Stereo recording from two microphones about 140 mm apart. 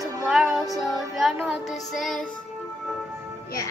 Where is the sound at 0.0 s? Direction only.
5° right (ahead or behind).